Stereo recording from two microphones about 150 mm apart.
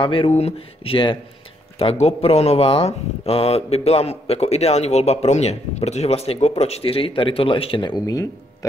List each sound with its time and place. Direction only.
0.0 s speech: 35° left (ahead or behind)